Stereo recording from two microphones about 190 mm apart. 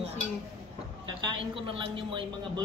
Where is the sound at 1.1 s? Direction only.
25° right (ahead or behind).